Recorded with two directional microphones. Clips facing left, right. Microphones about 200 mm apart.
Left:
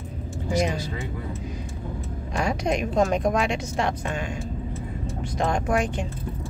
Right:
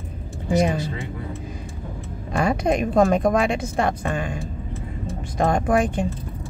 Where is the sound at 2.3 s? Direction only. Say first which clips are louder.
Right 4 dB; 55° right (ahead or behind).